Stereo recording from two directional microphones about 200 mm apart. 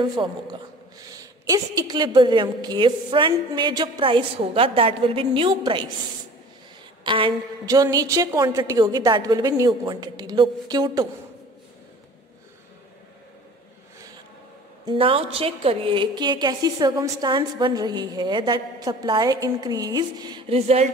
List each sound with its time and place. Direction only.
0.0 s a woman's voice: 20° right (ahead or behind)
7.1 s a woman's voice: 25° right (ahead or behind)
14.9 s a woman's voice: 25° right (ahead or behind)